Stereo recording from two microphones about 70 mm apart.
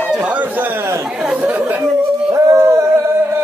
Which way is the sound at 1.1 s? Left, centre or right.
Centre.